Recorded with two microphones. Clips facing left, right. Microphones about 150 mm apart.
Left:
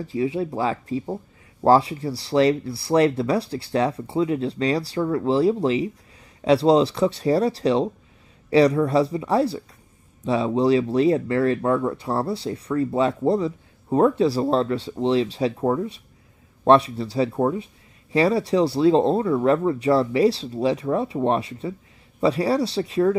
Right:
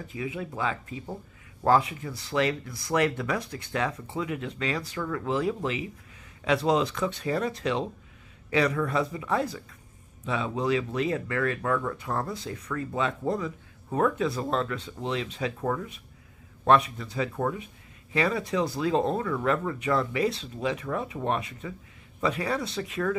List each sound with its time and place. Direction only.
0.0 s speech: 30° left (ahead or behind)